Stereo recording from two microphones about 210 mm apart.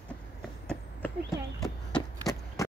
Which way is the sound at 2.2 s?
15° left (ahead or behind).